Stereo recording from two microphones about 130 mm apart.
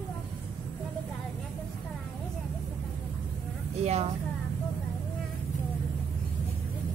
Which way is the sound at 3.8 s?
55° right (ahead or behind).